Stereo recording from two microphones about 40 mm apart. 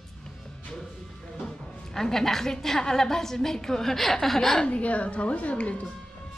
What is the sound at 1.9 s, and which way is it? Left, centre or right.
A woman's voice, centre.